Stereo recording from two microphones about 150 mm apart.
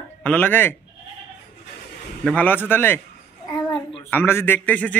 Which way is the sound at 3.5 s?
5° left (ahead or behind).